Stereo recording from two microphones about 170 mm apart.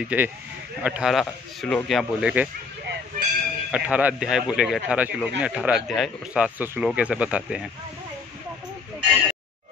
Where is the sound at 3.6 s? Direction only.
5° right (ahead or behind).